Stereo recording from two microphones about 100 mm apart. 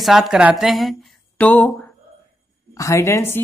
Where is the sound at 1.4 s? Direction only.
15° left (ahead or behind).